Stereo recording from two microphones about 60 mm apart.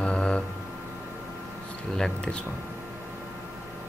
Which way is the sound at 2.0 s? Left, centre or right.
Centre.